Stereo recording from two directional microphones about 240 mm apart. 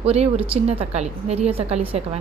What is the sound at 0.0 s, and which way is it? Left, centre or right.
A woman's voice, right.